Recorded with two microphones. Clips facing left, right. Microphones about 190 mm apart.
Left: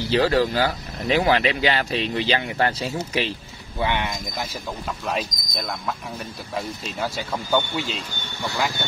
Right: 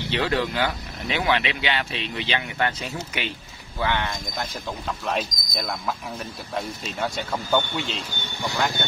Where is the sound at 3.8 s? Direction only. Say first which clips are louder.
Left 1 dB; 15° left (ahead or behind).